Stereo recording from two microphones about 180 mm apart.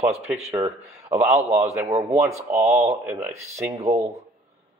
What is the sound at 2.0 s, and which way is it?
A man's voice, 15° right (ahead or behind).